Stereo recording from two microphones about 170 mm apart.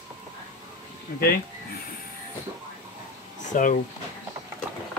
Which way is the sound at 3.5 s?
50° left (ahead or behind).